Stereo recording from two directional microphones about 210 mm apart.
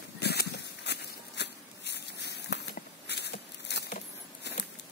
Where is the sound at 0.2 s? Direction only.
50° left (ahead or behind).